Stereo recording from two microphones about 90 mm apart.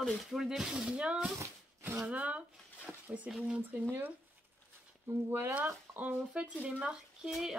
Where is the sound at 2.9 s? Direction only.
20° right (ahead or behind).